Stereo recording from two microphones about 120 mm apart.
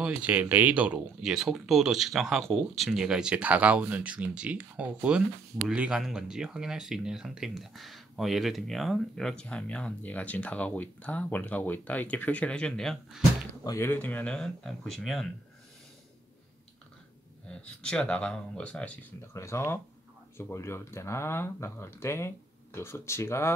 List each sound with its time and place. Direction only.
0.0 s speech: 10° right (ahead or behind); by 13.2 s 5° left (ahead or behind)
13.7 s speech: 20° left (ahead or behind); by 15.2 s centre (ahead or behind)
17.6 s speech: 10° left (ahead or behind)
19.3 s speech: 25° left (ahead or behind)